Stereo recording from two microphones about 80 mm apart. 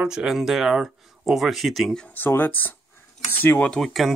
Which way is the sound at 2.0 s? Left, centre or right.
Left.